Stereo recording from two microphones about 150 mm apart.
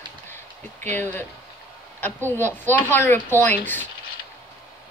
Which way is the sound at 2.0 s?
15° left (ahead or behind).